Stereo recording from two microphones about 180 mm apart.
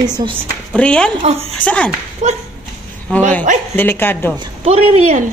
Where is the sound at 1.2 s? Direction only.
35° right (ahead or behind).